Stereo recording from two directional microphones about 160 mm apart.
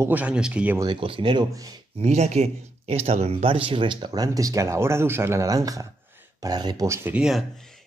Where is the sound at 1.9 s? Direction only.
45° right (ahead or behind).